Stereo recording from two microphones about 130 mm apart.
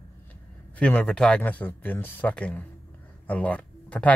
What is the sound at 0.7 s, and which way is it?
Speech, 10° left (ahead or behind).